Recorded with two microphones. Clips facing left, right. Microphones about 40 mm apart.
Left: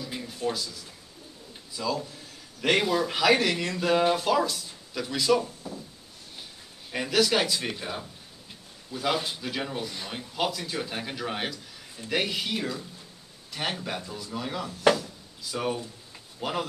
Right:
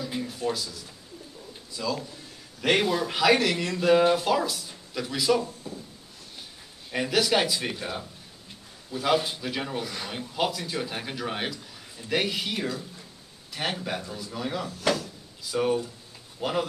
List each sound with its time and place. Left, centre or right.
0.1 s a sound: centre
1.8 s speech: centre
5.4 s speech: left
6.9 s speech: centre
14.7 s speech: left
15.5 s speech: centre